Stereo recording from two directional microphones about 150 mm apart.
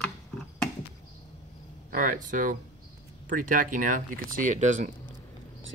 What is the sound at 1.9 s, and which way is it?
Speech, 60° right (ahead or behind).